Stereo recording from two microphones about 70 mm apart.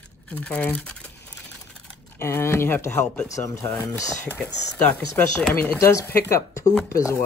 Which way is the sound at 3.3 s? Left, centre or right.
Left.